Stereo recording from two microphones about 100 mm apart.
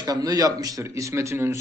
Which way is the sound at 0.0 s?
40° right (ahead or behind).